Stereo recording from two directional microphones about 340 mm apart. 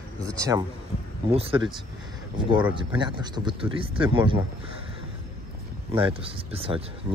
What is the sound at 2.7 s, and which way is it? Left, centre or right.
Speech, centre.